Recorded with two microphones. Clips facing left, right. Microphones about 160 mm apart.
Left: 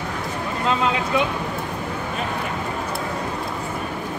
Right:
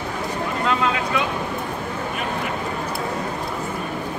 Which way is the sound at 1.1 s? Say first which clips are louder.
Left 2 dB; 20° left (ahead or behind).